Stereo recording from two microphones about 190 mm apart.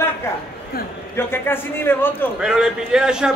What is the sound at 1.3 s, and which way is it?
Speech, 10° left (ahead or behind).